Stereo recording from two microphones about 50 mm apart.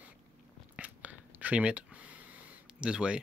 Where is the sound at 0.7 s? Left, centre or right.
Right.